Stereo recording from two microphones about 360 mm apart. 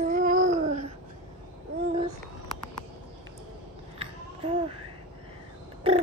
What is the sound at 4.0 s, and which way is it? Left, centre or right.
Babbling, centre.